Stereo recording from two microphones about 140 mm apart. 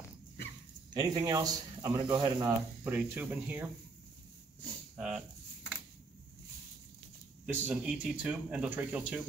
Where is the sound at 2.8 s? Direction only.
15° right (ahead or behind).